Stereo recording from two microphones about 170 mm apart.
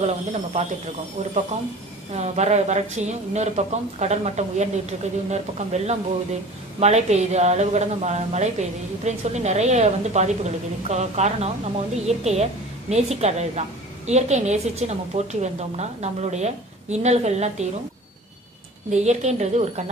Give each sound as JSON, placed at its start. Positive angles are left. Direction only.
{"t": 0.0, "sound": "a woman's voice", "side_deg": -40}
{"t": 2.1, "sound": "a woman's voice", "side_deg": -40}
{"t": 18.9, "sound": "a woman's voice", "side_deg": -40}